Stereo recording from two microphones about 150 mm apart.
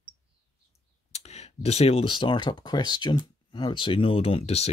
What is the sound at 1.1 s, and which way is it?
Speech, 45° left (ahead or behind).